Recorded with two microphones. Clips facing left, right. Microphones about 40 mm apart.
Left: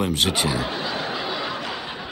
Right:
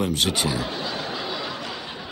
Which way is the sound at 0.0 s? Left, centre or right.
Centre.